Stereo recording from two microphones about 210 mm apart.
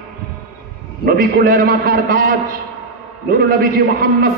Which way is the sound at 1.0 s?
45° right (ahead or behind).